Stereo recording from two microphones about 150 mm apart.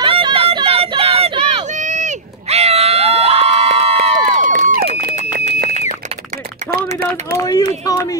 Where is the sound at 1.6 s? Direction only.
55° right (ahead or behind).